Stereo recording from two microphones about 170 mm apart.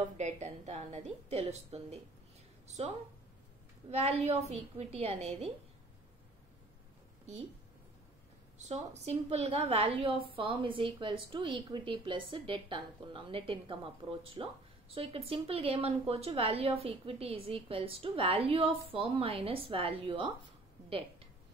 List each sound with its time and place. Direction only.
0.2 s a woman's voice: 40° right (ahead or behind)
3.9 s a woman's voice: 40° right (ahead or behind)
8.5 s a woman's voice: 40° right (ahead or behind)